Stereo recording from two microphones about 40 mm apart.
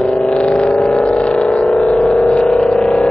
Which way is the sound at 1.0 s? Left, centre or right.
Left.